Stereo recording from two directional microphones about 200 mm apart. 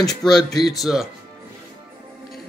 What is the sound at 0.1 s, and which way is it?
Speech, centre (ahead or behind).